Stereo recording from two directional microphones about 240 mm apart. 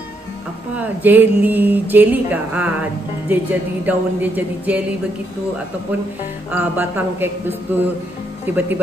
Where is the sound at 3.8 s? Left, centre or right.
Centre.